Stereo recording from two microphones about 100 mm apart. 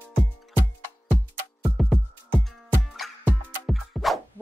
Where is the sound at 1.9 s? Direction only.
10° left (ahead or behind).